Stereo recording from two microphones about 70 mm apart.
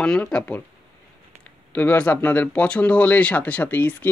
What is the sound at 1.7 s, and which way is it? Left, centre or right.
Speech, left.